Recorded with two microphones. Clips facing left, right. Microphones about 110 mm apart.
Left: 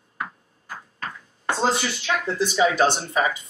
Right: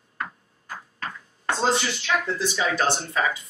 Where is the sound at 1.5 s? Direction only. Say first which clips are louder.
Left 1 dB; 10° left (ahead or behind).